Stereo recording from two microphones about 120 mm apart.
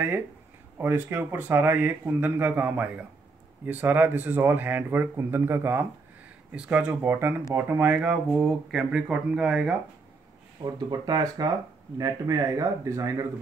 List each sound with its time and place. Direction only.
0.7 s speech: 15° right (ahead or behind)
6.5 s speech: 10° right (ahead or behind)
10.6 s speech: 35° right (ahead or behind)